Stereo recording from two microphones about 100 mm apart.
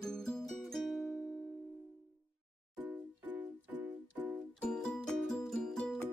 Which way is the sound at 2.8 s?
15° right (ahead or behind).